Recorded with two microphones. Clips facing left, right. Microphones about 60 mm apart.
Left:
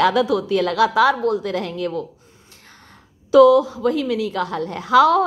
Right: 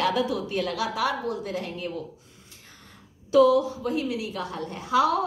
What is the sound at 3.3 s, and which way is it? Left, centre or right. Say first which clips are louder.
A woman's voice: left 7 dB; left.